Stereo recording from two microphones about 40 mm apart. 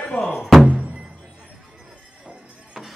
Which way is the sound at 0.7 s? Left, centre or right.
Right.